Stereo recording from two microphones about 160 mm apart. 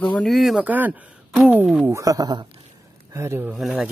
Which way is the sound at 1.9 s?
20° right (ahead or behind).